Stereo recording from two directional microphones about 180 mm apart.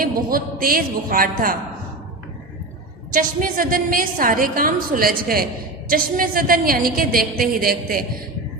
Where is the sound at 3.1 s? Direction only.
50° right (ahead or behind).